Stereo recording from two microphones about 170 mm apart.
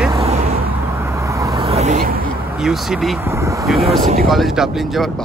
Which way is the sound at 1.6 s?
40° right (ahead or behind).